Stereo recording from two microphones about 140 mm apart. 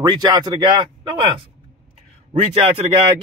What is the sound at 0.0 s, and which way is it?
Speech, 30° right (ahead or behind).